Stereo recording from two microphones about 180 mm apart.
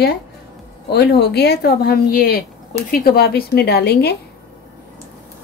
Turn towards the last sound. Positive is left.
turn(degrees=65)  # may be behind; listen again after turning